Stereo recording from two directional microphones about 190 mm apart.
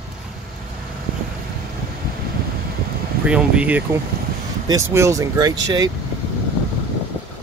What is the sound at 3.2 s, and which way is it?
Speech, 5° right (ahead or behind).